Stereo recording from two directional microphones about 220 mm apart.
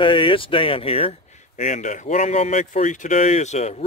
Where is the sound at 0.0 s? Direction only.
25° left (ahead or behind).